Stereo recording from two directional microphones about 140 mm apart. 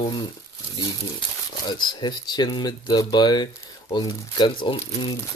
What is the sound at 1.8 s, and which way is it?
Speech, 30° left (ahead or behind).